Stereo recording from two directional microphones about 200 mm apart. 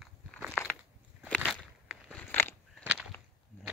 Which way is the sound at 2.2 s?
10° left (ahead or behind).